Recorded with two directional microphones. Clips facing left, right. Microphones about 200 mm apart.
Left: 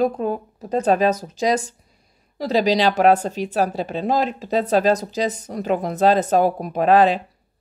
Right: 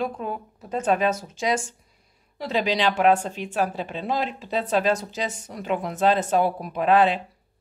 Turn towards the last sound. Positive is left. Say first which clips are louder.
# left 4 dB
turn(degrees=40)  # may be behind; listen again after turning